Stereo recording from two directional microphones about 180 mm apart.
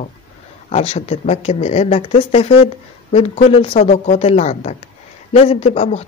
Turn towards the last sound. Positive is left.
turn(degrees=35)  # may be behind; listen again after turning